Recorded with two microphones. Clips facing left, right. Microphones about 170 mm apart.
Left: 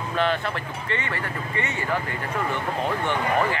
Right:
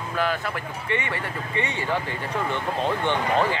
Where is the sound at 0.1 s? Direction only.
5° right (ahead or behind).